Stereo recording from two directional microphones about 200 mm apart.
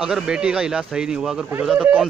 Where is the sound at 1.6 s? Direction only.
5° right (ahead or behind).